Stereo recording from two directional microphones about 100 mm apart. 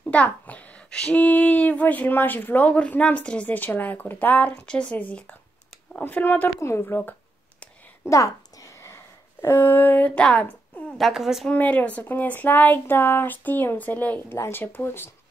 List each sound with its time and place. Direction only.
0.0 s a child's voice: 15° left (ahead or behind)
8.1 s a sound: 35° left (ahead or behind)
9.4 s a child's voice: 20° left (ahead or behind)
11.0 s a woman's voice: centre (ahead or behind)
11.4 s a child's voice: 15° left (ahead or behind)